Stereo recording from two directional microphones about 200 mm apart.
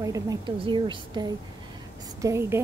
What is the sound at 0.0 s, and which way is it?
A woman's voice, 15° right (ahead or behind).